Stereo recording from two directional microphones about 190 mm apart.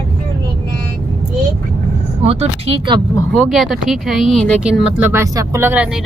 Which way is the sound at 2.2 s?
30° right (ahead or behind).